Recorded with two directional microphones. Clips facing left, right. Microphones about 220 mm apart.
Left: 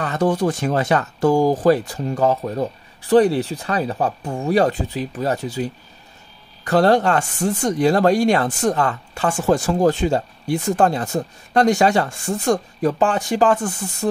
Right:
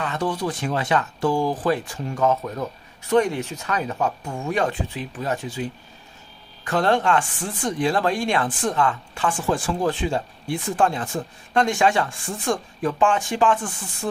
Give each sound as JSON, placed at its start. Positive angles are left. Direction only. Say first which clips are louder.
{"t": 0.0, "sound": "speech", "louder": "left 6 dB", "side_deg": 45}